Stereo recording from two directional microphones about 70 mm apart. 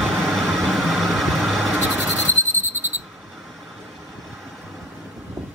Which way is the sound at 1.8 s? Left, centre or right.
Right.